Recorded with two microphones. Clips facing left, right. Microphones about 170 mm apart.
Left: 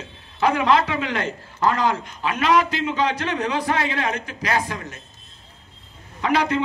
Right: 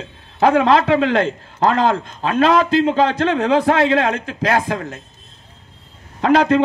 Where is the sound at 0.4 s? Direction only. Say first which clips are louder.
Right 5 dB; 55° right (ahead or behind).